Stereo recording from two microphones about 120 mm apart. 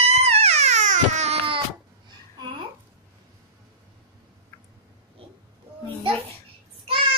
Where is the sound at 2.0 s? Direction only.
40° right (ahead or behind).